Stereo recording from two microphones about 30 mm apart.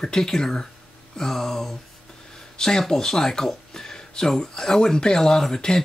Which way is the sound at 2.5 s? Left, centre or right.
Centre.